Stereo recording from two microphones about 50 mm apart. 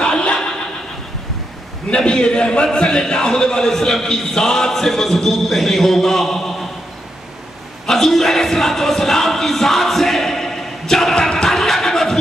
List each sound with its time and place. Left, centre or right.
0.0 s neigh: centre
1.9 s a man's voice: centre
7.8 s music: centre
11.1 s music: centre